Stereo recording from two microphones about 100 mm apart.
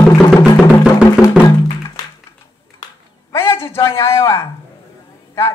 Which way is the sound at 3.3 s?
25° left (ahead or behind).